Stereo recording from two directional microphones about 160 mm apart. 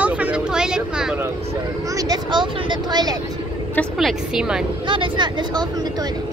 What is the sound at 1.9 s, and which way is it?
Speech, 25° right (ahead or behind).